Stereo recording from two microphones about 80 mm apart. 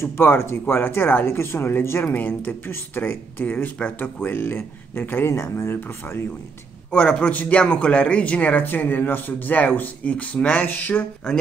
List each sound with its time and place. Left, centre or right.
0.0 s speech: left
6.9 s speech: centre